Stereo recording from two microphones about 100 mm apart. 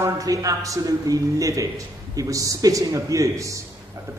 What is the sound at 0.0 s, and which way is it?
A man's voice, 35° right (ahead or behind).